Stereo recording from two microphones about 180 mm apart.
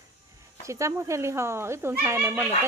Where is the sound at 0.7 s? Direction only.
15° right (ahead or behind).